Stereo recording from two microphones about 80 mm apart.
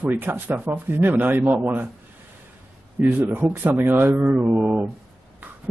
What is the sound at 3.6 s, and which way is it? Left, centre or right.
Speech, right.